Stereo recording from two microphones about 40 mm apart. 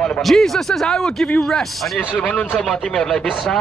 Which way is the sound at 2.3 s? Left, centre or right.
Left.